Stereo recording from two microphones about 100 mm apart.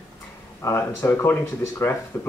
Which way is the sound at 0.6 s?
25° left (ahead or behind).